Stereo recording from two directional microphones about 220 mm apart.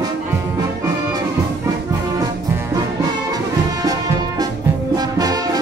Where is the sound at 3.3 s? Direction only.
15° right (ahead or behind).